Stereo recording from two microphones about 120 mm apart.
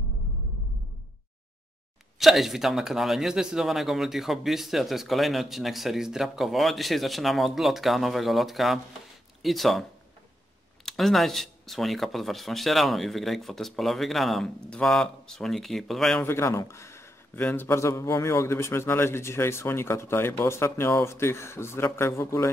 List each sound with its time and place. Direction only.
2.1 s speech: centre (ahead or behind)
10.9 s speech: centre (ahead or behind)
16.2 s speech: 20° left (ahead or behind)